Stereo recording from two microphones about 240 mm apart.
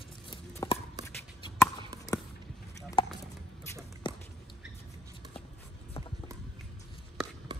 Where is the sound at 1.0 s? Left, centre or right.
Centre.